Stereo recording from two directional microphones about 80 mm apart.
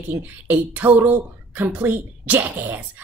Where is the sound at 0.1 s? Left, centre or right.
Right.